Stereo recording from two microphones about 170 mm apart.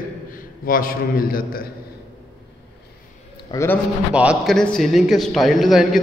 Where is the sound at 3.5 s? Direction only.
10° left (ahead or behind).